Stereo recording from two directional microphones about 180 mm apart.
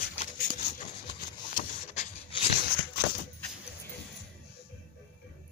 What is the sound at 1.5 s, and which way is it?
Vehicle, 45° left (ahead or behind).